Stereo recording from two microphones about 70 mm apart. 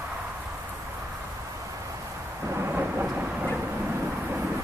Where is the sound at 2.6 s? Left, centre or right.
Right.